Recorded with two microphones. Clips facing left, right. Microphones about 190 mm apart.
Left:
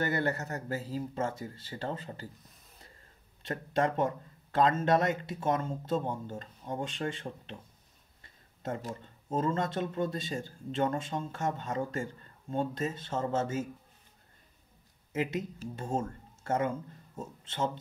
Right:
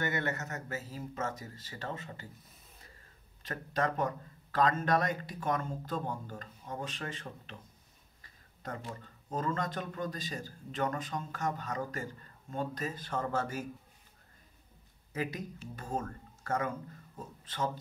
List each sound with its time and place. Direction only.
0.0 s speech: 35° left (ahead or behind)
3.4 s speech: 30° left (ahead or behind)
9.0 s speech: 25° left (ahead or behind)
15.1 s speech: 25° left (ahead or behind)